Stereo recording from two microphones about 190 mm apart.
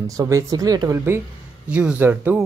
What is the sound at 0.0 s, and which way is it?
Speech, 15° right (ahead or behind).